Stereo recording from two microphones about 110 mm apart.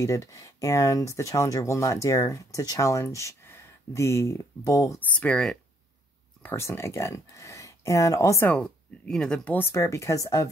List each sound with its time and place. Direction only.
0.0 s speech: 30° left (ahead or behind)
5.0 s speech: 10° left (ahead or behind)
6.4 s speech: 20° left (ahead or behind)
8.5 s speech: 10° left (ahead or behind); by 10.5 s 30° left (ahead or behind)